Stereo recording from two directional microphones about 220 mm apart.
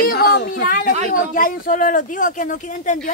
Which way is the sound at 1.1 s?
40° left (ahead or behind).